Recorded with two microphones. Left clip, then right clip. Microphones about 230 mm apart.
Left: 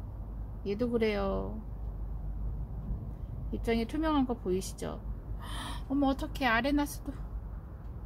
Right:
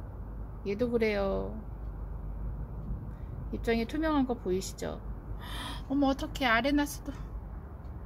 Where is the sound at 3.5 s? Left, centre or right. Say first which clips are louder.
Right 1 dB; centre.